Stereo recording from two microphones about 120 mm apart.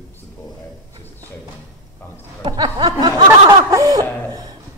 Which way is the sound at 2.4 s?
35° right (ahead or behind).